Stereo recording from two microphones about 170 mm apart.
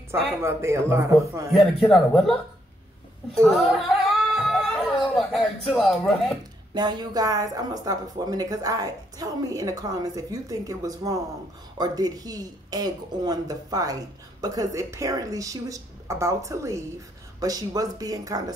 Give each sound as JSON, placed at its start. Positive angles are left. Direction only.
{"t": 0.1, "sound": "speech", "side_deg": -15}
{"t": 1.5, "sound": "speech", "side_deg": 0}
{"t": 3.3, "sound": "a sound", "side_deg": 0}
{"t": 6.7, "sound": "a woman's voice", "side_deg": -25}